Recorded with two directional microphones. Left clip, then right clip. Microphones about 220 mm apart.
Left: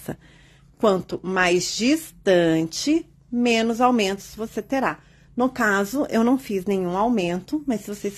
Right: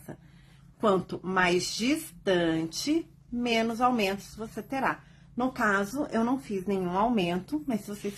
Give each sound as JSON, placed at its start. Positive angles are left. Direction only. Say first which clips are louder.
{"t": 0.7, "sound": "speech", "louder": "left 6 dB", "side_deg": 35}